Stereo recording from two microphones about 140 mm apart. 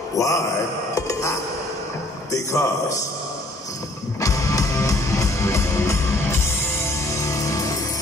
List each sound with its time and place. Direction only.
0.2 s speech: 25° left (ahead or behind)
0.9 s a sound: 25° left (ahead or behind)
2.3 s a man's voice: 20° left (ahead or behind)
4.2 s music: 20° left (ahead or behind)